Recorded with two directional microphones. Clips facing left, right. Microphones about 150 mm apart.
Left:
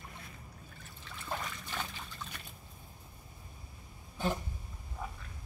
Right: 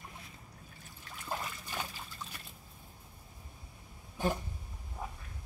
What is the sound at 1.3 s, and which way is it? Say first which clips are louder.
Trickle: even; 10° right (ahead or behind).